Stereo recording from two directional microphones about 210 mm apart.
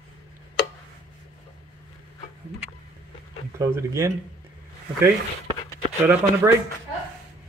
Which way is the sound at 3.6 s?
15° right (ahead or behind).